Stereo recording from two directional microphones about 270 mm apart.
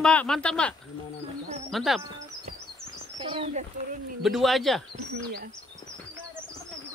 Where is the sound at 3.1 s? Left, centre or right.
Centre.